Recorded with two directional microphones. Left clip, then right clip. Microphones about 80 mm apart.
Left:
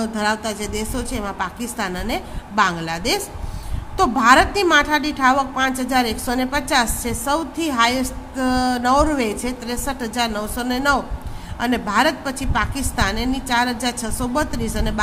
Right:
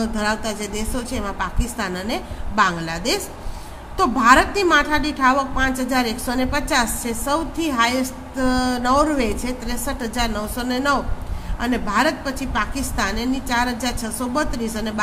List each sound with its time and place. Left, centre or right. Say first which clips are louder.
0.0 s a woman's voice: left 1 dB; left